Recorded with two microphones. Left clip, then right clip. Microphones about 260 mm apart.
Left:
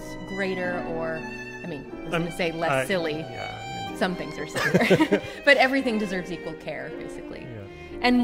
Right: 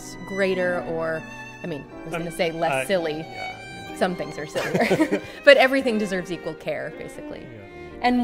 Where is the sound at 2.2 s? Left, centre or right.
Centre.